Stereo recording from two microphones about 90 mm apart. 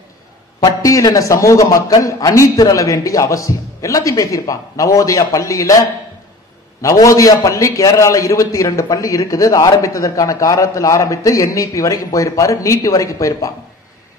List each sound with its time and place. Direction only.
0.6 s a man's voice: 40° left (ahead or behind)
6.8 s a man's voice: 40° left (ahead or behind)